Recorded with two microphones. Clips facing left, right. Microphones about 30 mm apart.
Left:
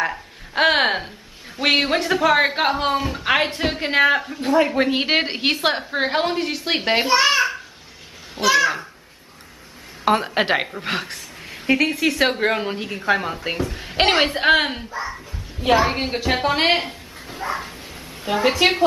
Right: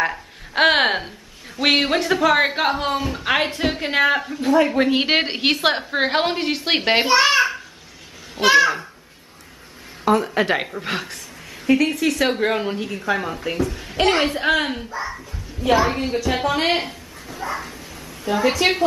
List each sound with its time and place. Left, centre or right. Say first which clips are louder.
0.0 s a woman's voice: right 1 dB; centre
10.0 s a woman's voice: even; left
10.7 s a woman's voice: left 1 dB; centre
11.6 s a woman's voice: right 1 dB; centre
13.9 s a woman's voice: left 1 dB; left
14.2 s speech: left 3 dB; left
14.8 s a woman's voice: even; centre
15.7 s speech: even; centre
16.0 s a woman's voice: even; left
17.5 s speech: left 1 dB; left
18.2 s a woman's voice: even; left